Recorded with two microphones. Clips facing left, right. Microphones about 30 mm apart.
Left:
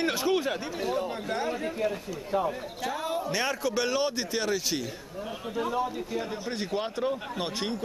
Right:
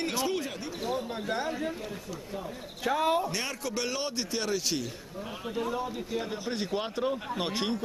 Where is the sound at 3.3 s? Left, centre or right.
Centre.